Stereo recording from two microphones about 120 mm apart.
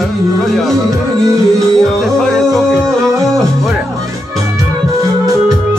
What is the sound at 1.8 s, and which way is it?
Music, 5° left (ahead or behind).